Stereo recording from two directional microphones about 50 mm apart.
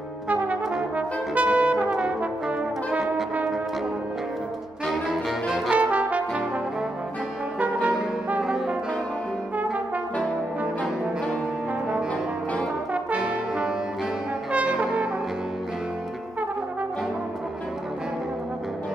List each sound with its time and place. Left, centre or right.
0.3 s brass instrument: right
4.8 s music: centre
5.7 s brass instrument: right
7.5 s brass instrument: right
8.4 s brass instrument: centre
12.9 s brass instrument: right